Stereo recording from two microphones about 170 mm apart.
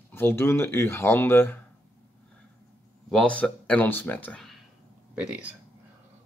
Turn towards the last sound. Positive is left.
turn(degrees=-5)  # may be behind; listen again after turning